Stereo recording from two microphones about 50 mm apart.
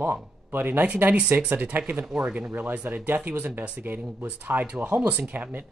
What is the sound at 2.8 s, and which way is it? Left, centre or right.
Speech, right.